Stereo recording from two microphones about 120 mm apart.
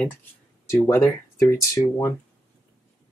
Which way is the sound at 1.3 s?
25° left (ahead or behind).